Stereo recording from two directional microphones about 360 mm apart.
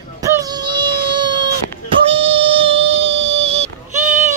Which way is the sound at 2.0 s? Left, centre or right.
Centre.